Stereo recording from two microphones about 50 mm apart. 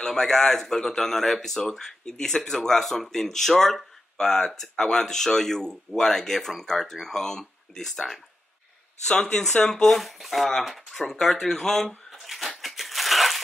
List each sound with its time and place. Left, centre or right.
0.0 s speech: centre
9.1 s speech: centre
9.9 s speech: centre
12.1 s a sound: centre